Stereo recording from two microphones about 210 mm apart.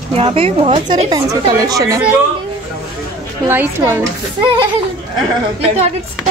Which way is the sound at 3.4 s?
10° right (ahead or behind).